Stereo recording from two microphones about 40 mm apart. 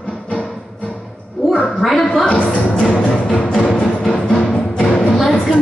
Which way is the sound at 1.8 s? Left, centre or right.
Centre.